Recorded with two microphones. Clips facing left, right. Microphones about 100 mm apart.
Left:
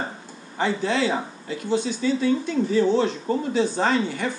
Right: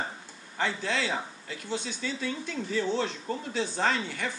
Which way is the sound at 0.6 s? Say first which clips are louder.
Left 7 dB; 10° left (ahead or behind).